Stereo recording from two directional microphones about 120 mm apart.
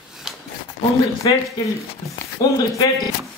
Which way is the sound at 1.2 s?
40° left (ahead or behind).